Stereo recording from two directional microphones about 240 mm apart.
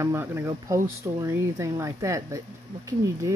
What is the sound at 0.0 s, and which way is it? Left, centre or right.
Speech, centre.